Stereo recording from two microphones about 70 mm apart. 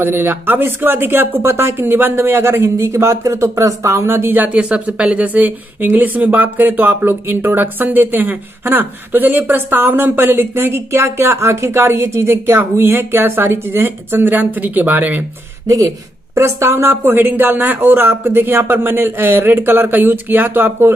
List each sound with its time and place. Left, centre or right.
0.0 s speech: right
15.6 s speech: right
16.9 s speech: right